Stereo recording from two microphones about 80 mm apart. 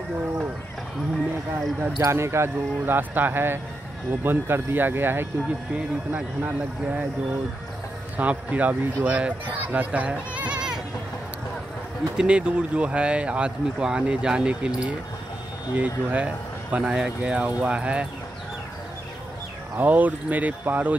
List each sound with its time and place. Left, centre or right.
2.0 s speech: right
6.1 s speech: centre
8.2 s speech: centre
12.2 s speech: centre
19.8 s speech: right